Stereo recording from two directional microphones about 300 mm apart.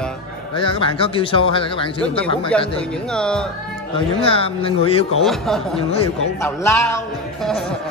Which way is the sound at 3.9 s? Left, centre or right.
Centre.